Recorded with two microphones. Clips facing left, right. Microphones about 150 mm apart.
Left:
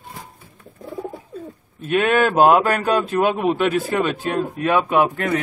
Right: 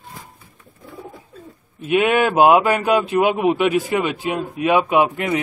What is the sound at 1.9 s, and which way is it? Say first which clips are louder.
Speech: right 1 dB; 10° right (ahead or behind).